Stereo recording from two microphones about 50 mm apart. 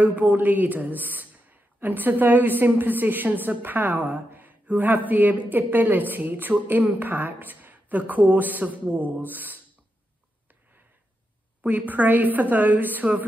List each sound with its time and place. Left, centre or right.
0.0 s speech: right
11.6 s speech: right